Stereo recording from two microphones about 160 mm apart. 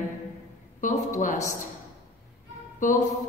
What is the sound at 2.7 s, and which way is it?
Speech, 50° left (ahead or behind).